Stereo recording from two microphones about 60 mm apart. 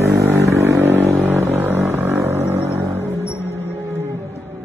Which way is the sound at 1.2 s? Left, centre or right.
Right.